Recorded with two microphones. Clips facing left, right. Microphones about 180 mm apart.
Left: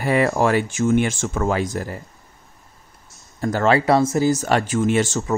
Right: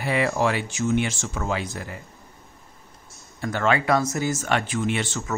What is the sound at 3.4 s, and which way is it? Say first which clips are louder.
Speech: left 5 dB; 40° left (ahead or behind).